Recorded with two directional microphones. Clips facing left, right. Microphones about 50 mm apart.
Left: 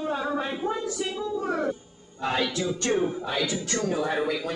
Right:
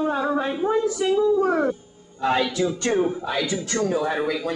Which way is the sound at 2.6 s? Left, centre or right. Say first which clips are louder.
Right 4 dB; right.